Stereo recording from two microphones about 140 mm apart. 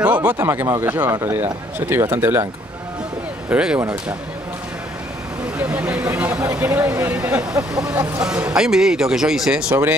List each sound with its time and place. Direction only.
0.0 s speech: 10° right (ahead or behind)
3.4 s speech: 10° right (ahead or behind)
5.6 s speech: 10° right (ahead or behind)
6.4 s speech: 20° right (ahead or behind); by 9.8 s 5° right (ahead or behind)